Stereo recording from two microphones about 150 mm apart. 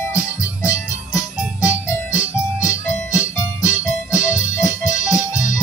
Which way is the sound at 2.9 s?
20° left (ahead or behind).